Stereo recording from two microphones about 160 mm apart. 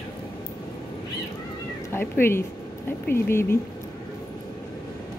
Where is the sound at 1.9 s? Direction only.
15° left (ahead or behind).